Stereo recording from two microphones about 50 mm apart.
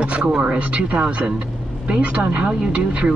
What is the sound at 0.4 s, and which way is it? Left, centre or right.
Speech, right.